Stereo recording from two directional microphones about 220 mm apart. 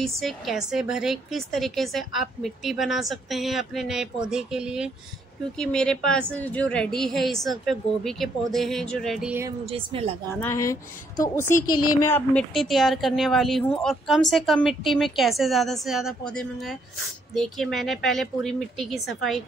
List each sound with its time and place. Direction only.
0.0 s a woman's voice: centre (ahead or behind)
9.7 s a woman's voice: 25° right (ahead or behind)
10.4 s a woman's voice: 10° left (ahead or behind)